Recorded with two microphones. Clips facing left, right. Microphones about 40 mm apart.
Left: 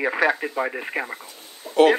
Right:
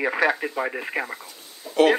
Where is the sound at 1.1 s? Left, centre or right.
Left.